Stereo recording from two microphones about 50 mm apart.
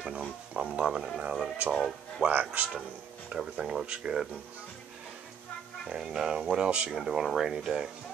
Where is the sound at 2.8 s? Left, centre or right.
Centre.